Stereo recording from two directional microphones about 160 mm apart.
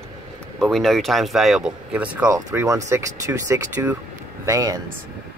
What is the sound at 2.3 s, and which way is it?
Speech, 20° right (ahead or behind).